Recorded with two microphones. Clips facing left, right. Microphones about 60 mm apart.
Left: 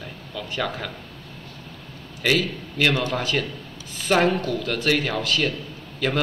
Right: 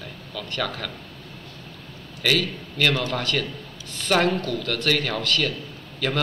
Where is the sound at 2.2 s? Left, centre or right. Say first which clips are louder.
Left 1 dB; centre.